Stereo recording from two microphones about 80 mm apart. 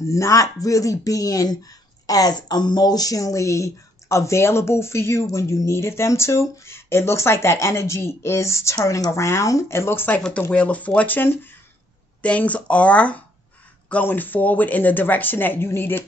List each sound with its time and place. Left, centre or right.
0.1 s speech: left